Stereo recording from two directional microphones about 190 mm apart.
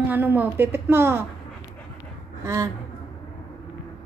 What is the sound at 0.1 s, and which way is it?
A woman's voice, 10° right (ahead or behind).